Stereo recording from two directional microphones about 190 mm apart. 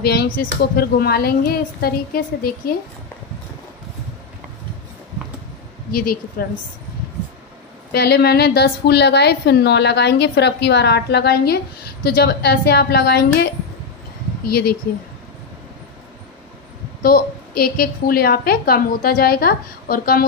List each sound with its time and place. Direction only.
0.0 s a woman's voice: 55° left (ahead or behind)
6.4 s a woman's voice: 50° left (ahead or behind)
7.9 s a woman's voice: 55° left (ahead or behind)
17.0 s a woman's voice: 50° left (ahead or behind)